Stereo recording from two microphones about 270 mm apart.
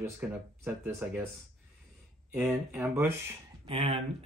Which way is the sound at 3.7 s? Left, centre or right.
Centre.